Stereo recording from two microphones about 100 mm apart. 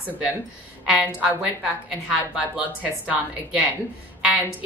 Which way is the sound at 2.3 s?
10° right (ahead or behind).